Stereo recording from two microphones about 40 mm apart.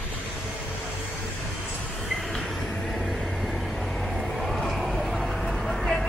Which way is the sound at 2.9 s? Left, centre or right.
Centre.